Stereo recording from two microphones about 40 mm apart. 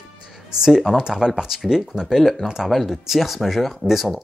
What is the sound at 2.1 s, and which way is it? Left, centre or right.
Speech, centre.